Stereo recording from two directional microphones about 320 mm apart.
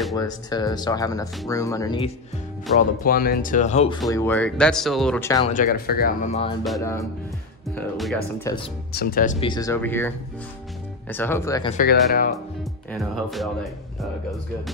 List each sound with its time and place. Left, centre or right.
0.2 s speech: centre
3.0 s speech: left
4.1 s speech: centre
5.5 s speech: left
6.6 s speech: centre
8.9 s speech: left; by 11.7 s centre
11.7 s speech: left
12.9 s speech: centre